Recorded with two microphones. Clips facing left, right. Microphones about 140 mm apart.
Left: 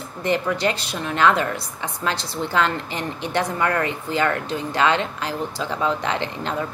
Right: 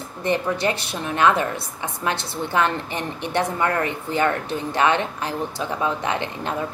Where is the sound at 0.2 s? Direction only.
25° right (ahead or behind).